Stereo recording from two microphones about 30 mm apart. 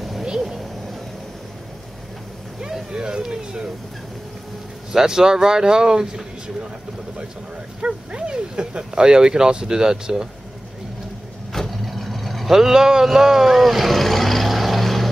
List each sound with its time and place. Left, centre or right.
0.2 s a sound: centre
2.9 s speech: right
4.9 s speech: right
7.8 s speech: right
11.7 s vehicle: centre
12.4 s speech: centre
13.0 s vehicle: centre